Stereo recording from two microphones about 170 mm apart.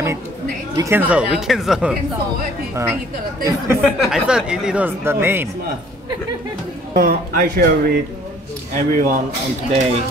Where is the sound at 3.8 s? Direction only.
5° right (ahead or behind).